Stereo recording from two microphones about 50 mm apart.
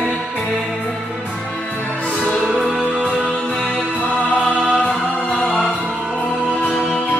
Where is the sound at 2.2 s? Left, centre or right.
Left.